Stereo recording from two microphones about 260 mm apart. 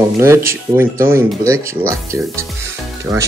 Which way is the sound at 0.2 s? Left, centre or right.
Centre.